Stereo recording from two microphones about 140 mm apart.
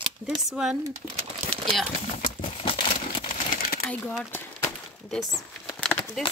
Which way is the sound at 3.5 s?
90° left.